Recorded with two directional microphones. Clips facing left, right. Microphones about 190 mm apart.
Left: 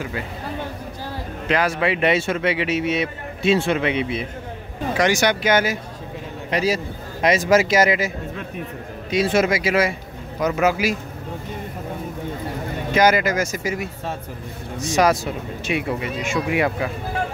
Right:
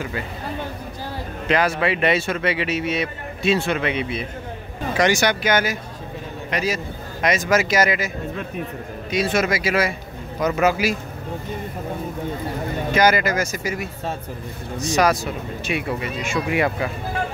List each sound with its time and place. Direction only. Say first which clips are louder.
1.5 s speech: even; 10° left (ahead or behind)
4.9 s speech: right 1 dB; 5° left (ahead or behind)
5.2 s speech: left 1 dB; 25° left (ahead or behind)
9.1 s speech: left 2 dB; 25° left (ahead or behind)
10.4 s speech: even; 10° left (ahead or behind)
12.9 s speech: left 1 dB; 20° left (ahead or behind)